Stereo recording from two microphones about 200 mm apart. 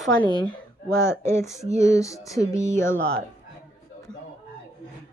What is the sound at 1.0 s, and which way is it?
Speech, 15° left (ahead or behind).